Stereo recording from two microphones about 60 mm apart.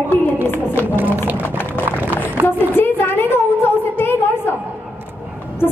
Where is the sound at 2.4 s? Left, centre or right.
Left.